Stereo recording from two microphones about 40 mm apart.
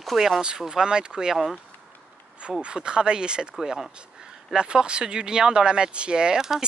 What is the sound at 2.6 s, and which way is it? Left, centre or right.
Speech, right.